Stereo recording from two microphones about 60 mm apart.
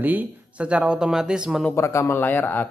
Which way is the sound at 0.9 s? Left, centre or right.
Centre.